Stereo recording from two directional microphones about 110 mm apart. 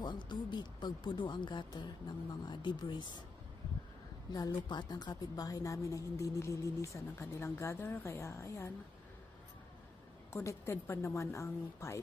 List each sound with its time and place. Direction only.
0.0 s speech: 45° left (ahead or behind)
4.3 s a woman's voice: 40° left (ahead or behind)
10.3 s a woman's voice: 25° left (ahead or behind)